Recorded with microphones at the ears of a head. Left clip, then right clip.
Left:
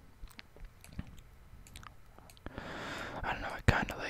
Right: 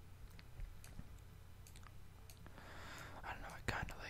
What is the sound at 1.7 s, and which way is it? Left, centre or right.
Chewing, left.